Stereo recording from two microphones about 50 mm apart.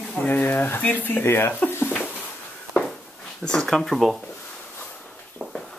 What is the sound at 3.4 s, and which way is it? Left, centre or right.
Speech, centre.